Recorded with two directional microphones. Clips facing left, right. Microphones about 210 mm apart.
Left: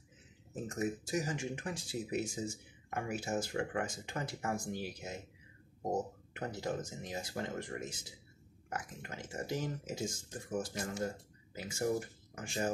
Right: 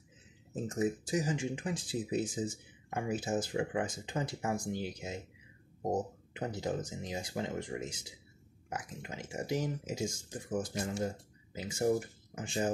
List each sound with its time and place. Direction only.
0.7 s speech: 20° right (ahead or behind)
6.3 s speech: 15° right (ahead or behind)